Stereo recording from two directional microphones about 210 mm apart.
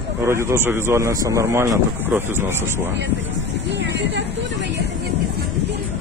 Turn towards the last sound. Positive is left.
turn(degrees=-55)  # may be behind; listen again after turning